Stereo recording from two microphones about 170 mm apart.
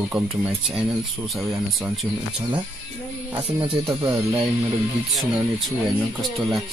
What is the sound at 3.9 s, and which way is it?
Speech, 20° right (ahead or behind).